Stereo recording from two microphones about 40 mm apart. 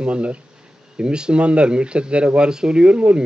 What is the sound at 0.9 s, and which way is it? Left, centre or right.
Speech, right.